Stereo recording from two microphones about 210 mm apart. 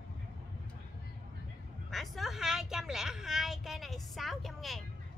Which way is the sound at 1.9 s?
Centre (ahead or behind).